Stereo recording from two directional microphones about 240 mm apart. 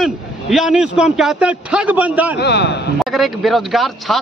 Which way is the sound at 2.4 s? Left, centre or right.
Left.